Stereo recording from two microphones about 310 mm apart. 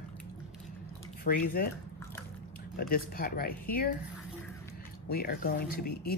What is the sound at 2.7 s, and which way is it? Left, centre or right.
Speech, left.